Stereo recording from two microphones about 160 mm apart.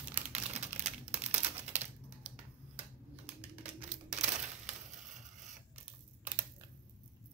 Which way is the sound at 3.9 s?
50° right (ahead or behind).